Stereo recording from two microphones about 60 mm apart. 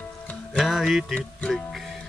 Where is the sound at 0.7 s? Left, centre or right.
Centre.